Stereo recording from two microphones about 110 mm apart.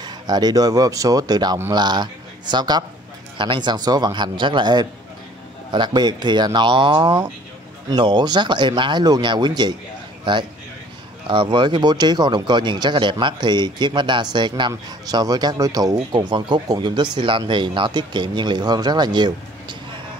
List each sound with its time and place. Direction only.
0.0 s a man's voice: 40° right (ahead or behind)